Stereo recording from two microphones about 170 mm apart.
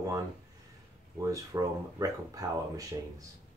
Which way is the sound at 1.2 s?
20° right (ahead or behind).